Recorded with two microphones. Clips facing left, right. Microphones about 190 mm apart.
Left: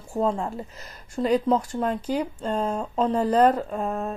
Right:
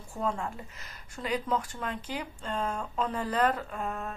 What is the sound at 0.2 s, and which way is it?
Speech, 35° left (ahead or behind).